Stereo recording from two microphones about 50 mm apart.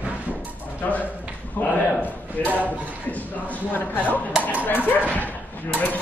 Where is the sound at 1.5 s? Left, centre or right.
Left.